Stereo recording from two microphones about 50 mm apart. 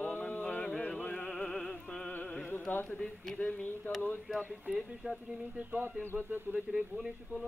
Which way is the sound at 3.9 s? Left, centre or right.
Left.